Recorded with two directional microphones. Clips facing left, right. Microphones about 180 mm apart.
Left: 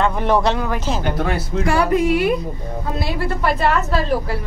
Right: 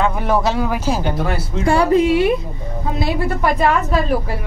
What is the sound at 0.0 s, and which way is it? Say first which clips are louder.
Speech: even; 5° right (ahead or behind).